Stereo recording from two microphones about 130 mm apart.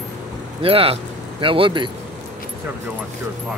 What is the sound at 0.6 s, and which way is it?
Speech, 45° right (ahead or behind).